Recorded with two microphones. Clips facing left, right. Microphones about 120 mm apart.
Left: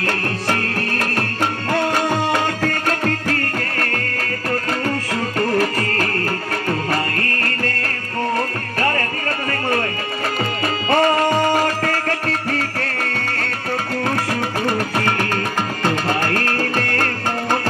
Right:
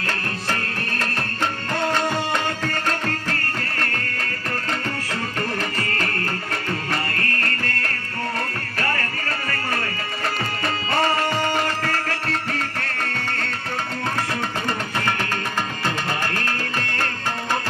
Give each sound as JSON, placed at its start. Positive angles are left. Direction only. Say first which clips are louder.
{"t": 5.6, "sound": "music", "louder": "left 7 dB", "side_deg": 40}
{"t": 9.5, "sound": "music", "louder": "left 7 dB", "side_deg": 35}
{"t": 10.9, "sound": "music", "louder": "left 6 dB", "side_deg": 45}
{"t": 15.8, "sound": "music", "louder": "left 8 dB", "side_deg": 45}